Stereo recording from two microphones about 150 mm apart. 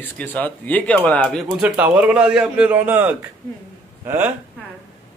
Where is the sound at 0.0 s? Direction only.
10° left (ahead or behind).